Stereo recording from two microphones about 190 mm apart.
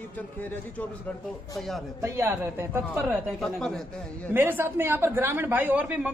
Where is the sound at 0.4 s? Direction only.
10° left (ahead or behind).